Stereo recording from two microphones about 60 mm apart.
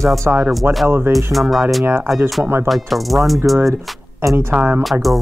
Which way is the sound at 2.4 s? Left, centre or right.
Right.